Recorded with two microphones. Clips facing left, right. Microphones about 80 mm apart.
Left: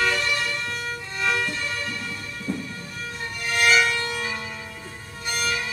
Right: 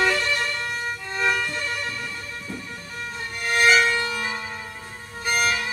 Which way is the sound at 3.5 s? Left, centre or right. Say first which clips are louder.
Right 2 dB; right.